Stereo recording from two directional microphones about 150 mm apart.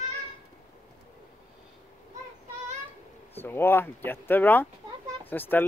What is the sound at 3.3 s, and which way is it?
A child's voice, 15° left (ahead or behind).